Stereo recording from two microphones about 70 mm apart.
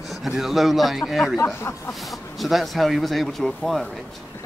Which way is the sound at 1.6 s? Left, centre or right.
Left.